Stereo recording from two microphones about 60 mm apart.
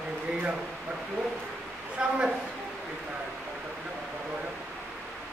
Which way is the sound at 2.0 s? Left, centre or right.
Centre.